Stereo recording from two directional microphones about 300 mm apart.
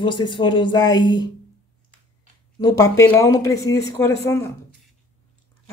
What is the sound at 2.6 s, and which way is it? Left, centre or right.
Speech, centre.